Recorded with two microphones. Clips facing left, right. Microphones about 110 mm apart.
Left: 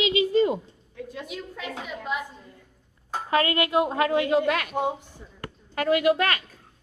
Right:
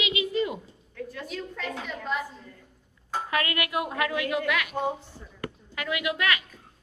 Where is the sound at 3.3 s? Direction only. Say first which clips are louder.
Left 7 dB; 30° left (ahead or behind).